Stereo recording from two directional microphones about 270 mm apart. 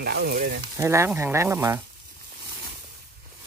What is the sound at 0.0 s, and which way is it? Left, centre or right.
Speech, right.